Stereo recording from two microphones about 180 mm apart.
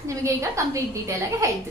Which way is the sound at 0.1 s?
15° right (ahead or behind).